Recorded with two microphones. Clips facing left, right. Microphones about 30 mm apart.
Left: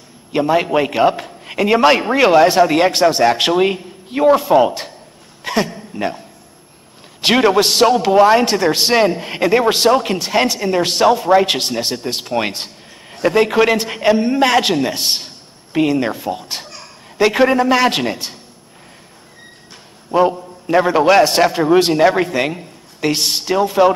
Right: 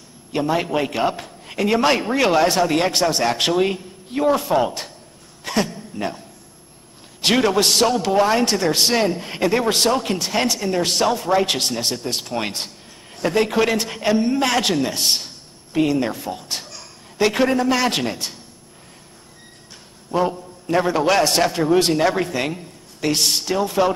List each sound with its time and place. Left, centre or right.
0.3 s a man's voice: centre
5.4 s a sound: centre
7.2 s a man's voice: centre
20.1 s a man's voice: centre